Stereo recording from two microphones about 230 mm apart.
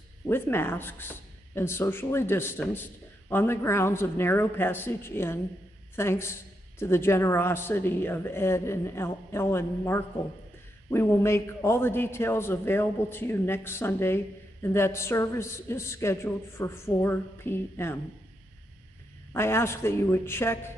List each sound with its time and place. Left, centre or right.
0.3 s a man's voice: centre
19.3 s a man's voice: centre